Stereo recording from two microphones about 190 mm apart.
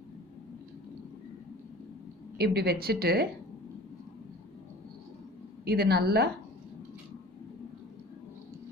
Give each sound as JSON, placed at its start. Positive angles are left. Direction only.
{"t": 2.3, "sound": "a woman's voice", "side_deg": -55}
{"t": 5.7, "sound": "a woman's voice", "side_deg": -55}